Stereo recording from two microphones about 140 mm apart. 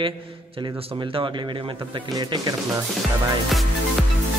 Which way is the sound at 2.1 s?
25° right (ahead or behind).